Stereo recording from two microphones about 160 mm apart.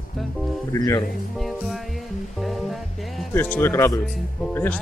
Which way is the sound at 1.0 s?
Centre (ahead or behind).